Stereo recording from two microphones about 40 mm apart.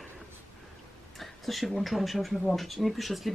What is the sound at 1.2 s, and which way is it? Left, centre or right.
Speech, centre.